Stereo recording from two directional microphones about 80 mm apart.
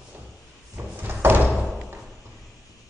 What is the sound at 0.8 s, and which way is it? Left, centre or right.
Drawer open or close, right.